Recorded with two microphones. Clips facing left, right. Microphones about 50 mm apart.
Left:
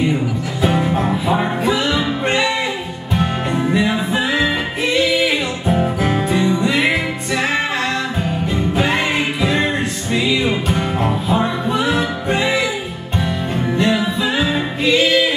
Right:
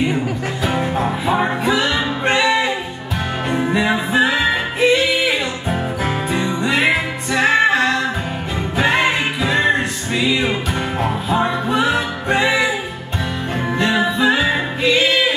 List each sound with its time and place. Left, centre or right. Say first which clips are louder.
1.4 s music: even; right
6.3 s music: left 1 dB; right
13.7 s music: right 1 dB; right
14.3 s music: right 1 dB; right